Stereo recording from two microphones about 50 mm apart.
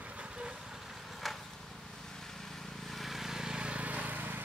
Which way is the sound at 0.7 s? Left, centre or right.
Centre.